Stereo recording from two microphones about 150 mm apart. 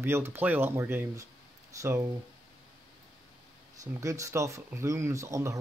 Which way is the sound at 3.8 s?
20° right (ahead or behind).